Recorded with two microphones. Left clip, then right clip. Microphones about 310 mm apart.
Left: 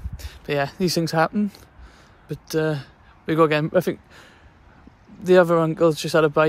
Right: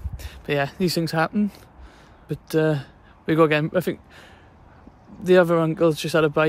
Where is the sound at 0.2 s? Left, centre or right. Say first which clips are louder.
Even; centre.